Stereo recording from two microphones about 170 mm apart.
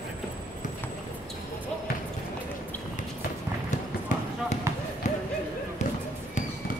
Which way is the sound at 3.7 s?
45° left (ahead or behind).